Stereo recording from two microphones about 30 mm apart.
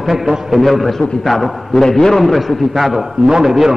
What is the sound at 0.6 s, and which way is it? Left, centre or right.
A man's voice, centre.